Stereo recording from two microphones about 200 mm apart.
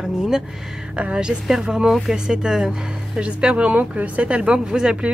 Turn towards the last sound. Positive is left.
turn(degrees=-5)  # may be behind; listen again after turning